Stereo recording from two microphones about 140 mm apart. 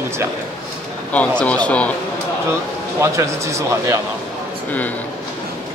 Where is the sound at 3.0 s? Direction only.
20° right (ahead or behind).